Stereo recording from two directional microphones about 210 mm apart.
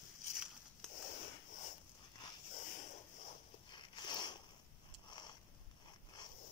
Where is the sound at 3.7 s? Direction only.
20° left (ahead or behind).